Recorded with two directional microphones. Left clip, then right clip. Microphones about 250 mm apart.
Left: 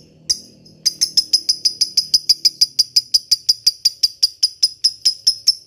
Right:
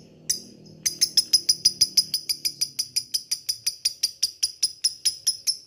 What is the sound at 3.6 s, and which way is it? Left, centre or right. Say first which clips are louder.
Cricket: left 10 dB; centre.